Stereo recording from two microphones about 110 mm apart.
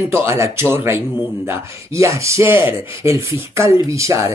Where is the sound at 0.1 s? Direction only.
25° right (ahead or behind).